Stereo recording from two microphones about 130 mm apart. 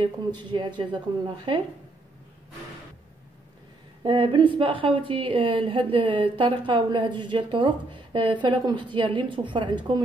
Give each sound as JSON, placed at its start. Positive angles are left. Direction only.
{"t": 0.0, "sound": "a woman's voice", "side_deg": -35}
{"t": 4.0, "sound": "a woman's voice", "side_deg": -40}